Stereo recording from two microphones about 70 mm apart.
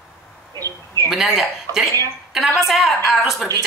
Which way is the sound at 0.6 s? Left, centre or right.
Right.